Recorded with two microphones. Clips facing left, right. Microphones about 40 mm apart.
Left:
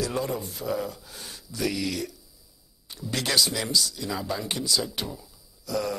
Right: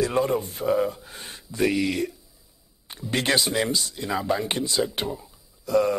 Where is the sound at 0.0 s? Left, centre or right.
Right.